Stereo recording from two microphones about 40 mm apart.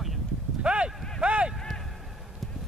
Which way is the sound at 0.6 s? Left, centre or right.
Right.